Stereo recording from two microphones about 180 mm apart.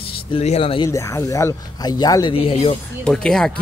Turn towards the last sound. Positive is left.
turn(degrees=5)  # may be behind; listen again after turning